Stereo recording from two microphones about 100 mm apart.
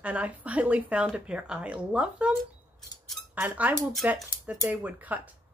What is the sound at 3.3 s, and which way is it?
Speech, 15° right (ahead or behind).